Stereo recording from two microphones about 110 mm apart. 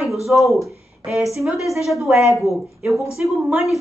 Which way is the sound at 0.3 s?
Centre (ahead or behind).